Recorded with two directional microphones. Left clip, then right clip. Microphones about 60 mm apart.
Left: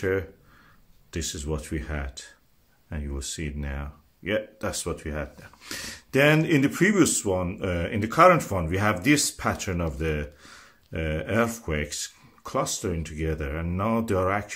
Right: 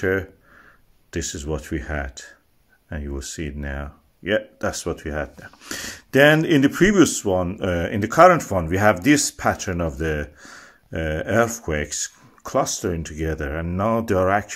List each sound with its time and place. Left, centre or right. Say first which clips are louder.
0.0 s speech: right 4 dB; right